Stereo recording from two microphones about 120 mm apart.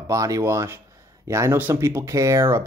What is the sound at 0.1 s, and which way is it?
Speech, 25° right (ahead or behind).